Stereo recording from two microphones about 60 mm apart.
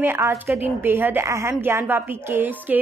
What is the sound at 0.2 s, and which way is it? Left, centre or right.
Speech, right.